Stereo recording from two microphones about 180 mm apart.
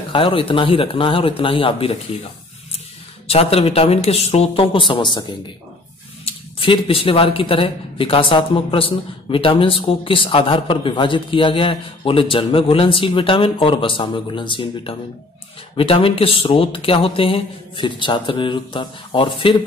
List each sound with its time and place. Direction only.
0.1 s speech: 30° left (ahead or behind)
3.3 s speech: 35° left (ahead or behind)
6.2 s speech: 30° left (ahead or behind)